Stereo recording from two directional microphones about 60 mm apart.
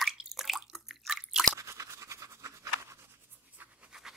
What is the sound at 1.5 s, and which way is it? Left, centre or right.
Writing, right.